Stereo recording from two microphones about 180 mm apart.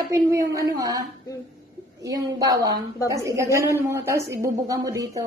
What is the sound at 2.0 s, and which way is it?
A woman's voice, 20° right (ahead or behind).